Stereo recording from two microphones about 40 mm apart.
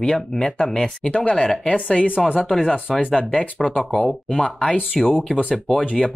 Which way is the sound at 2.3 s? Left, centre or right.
Centre.